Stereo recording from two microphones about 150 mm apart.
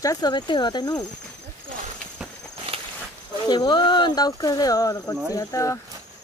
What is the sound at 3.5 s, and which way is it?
Cricket, 30° left (ahead or behind).